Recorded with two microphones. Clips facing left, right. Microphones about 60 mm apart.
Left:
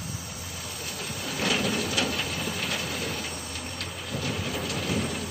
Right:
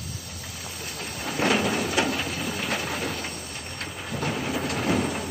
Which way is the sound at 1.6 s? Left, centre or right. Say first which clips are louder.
Right 3 dB; right.